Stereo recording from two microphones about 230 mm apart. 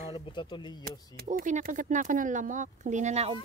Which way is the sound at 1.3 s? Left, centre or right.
Right.